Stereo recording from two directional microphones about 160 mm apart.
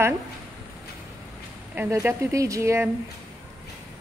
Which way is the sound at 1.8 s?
15° right (ahead or behind).